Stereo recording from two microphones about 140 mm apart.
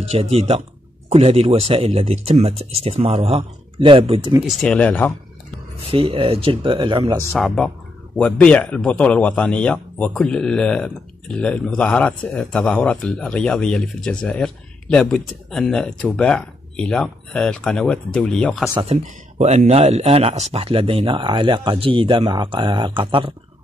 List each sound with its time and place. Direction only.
0.1 s speech: 45° right (ahead or behind)
4.5 s speech: 5° left (ahead or behind)
5.9 s speech: 40° right (ahead or behind)
7.3 s a man's voice: centre (ahead or behind)
18.8 s speech: 50° right (ahead or behind)